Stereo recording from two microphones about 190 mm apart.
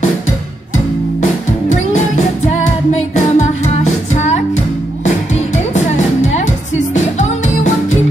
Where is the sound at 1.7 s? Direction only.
40° left (ahead or behind).